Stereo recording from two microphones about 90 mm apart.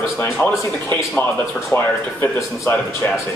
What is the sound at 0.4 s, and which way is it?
Speech, 25° left (ahead or behind).